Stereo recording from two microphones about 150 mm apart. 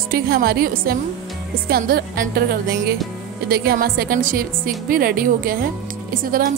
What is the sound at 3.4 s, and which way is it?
A woman's voice, 90° right.